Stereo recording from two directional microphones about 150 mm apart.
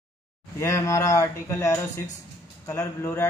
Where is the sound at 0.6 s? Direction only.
20° left (ahead or behind).